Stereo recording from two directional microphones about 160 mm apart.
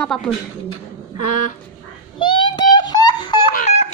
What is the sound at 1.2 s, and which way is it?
Speech, 50° left (ahead or behind).